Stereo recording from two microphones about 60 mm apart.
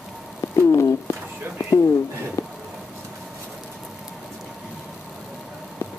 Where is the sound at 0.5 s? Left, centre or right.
Left.